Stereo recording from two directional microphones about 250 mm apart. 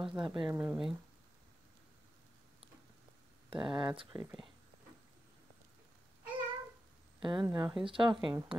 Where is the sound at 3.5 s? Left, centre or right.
Centre.